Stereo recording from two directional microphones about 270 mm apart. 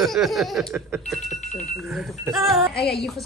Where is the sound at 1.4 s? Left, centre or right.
Left.